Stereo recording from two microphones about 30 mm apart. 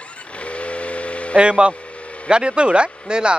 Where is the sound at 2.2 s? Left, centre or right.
Right.